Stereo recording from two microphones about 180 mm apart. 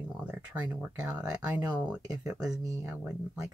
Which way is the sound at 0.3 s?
5° right (ahead or behind).